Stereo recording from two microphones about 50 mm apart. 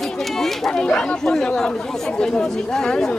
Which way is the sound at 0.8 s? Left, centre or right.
Centre.